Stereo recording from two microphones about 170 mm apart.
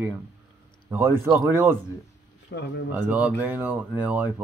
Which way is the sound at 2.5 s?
90° left.